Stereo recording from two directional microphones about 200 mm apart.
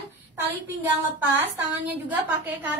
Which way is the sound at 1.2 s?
10° right (ahead or behind).